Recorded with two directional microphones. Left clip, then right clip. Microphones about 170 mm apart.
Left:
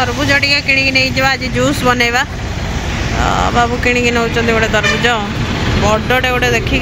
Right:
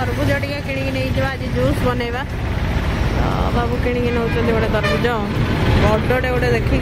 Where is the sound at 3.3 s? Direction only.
15° left (ahead or behind).